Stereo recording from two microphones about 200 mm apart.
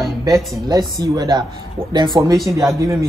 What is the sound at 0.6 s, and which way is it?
Speech, 20° right (ahead or behind).